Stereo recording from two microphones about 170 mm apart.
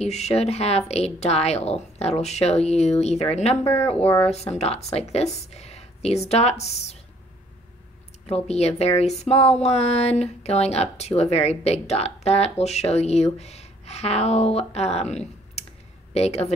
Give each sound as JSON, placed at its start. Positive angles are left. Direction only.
{"t": 0.0, "sound": "a woman's voice", "side_deg": 40}
{"t": 8.3, "sound": "a woman's voice", "side_deg": 40}